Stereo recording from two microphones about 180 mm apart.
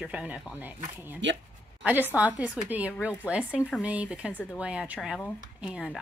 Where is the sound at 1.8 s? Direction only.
10° right (ahead or behind).